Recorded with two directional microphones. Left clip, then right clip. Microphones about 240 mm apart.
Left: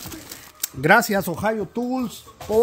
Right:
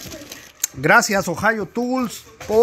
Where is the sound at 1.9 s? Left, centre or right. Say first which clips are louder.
Right 4 dB; centre.